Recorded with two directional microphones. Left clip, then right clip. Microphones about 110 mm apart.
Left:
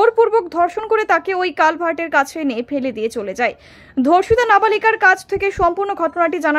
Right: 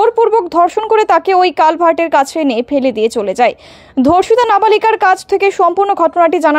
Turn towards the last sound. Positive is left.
turn(degrees=-35)  # may be behind; listen again after turning